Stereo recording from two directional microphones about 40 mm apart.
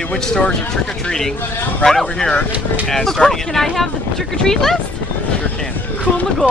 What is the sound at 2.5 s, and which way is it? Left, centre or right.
Speech, right.